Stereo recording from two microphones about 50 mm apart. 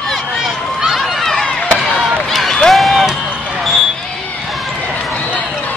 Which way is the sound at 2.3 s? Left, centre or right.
Centre.